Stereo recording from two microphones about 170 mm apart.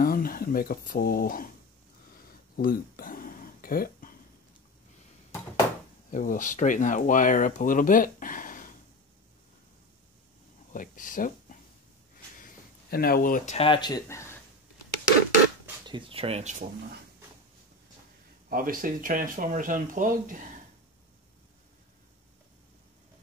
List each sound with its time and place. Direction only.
0.0 s speech: 60° left (ahead or behind)
2.5 s a sound: 60° left (ahead or behind)
6.0 s speech: 50° left (ahead or behind)
10.7 s speech: 50° left (ahead or behind)
12.9 s speech: 60° left (ahead or behind)
13.6 s speech: 30° left (ahead or behind)
15.8 s speech: 30° right (ahead or behind)
18.5 s speech: 55° right (ahead or behind)